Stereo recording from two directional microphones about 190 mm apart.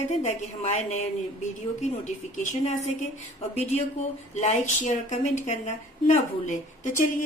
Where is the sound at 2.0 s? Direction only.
40° left (ahead or behind).